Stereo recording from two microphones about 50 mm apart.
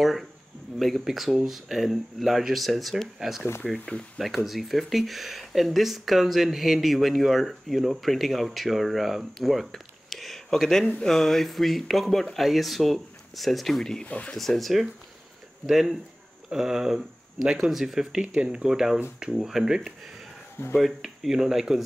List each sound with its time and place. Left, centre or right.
0.7 s speech: centre
14.0 s speech: left
14.3 s speech: centre
18.2 s speech: centre
20.6 s speech: left
21.0 s speech: centre